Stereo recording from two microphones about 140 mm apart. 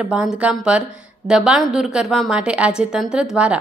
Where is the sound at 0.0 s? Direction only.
10° right (ahead or behind).